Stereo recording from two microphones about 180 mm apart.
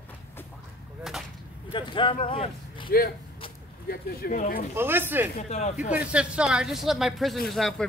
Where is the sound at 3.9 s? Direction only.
55° left (ahead or behind).